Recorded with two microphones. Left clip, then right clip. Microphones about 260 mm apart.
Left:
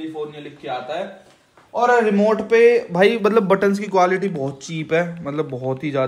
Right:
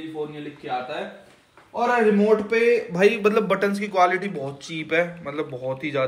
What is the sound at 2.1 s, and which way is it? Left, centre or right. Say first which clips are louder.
A man's voice: left 4 dB; left.